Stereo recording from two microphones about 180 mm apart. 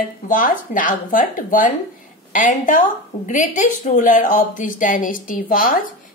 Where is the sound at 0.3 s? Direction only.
50° left (ahead or behind).